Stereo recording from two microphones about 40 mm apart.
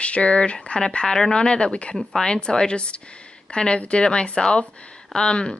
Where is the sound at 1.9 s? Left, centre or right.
Centre.